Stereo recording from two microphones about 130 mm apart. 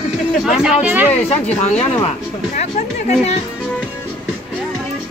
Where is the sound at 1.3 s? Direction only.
55° left (ahead or behind).